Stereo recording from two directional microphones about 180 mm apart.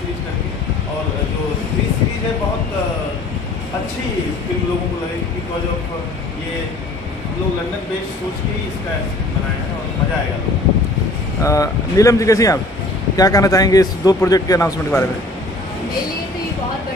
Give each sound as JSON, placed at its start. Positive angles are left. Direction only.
{"t": 11.4, "sound": "a man's voice", "side_deg": 20}